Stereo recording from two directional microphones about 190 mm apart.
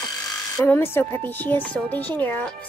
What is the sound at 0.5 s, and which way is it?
A woman's voice, 10° left (ahead or behind).